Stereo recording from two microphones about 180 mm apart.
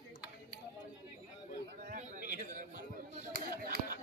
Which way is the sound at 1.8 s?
50° right (ahead or behind).